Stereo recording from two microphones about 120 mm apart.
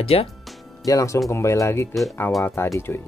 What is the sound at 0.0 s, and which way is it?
Speech, 55° left (ahead or behind).